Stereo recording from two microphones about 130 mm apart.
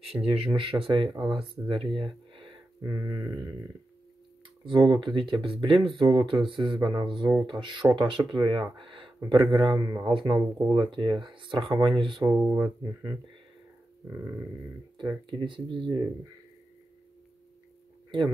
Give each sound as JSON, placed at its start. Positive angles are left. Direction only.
{"t": 0.1, "sound": "speech", "side_deg": -15}
{"t": 0.6, "sound": "speech", "side_deg": -45}
{"t": 2.8, "sound": "speech", "side_deg": -25}
{"t": 4.6, "sound": "speech", "side_deg": -35}
{"t": 8.7, "sound": "a sound", "side_deg": -40}
{"t": 9.3, "sound": "speech", "side_deg": -40}
{"t": 12.3, "sound": "speech", "side_deg": -25}
{"t": 15.2, "sound": "speech", "side_deg": -40}